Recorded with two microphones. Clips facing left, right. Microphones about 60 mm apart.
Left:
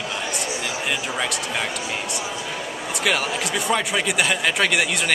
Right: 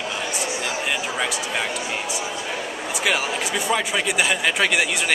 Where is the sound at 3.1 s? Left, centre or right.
Centre.